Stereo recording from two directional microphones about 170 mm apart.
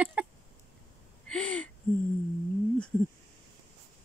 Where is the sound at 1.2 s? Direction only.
5° left (ahead or behind).